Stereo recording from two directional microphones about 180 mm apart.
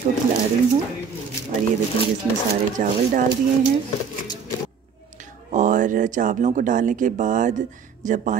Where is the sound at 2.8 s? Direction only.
45° right (ahead or behind).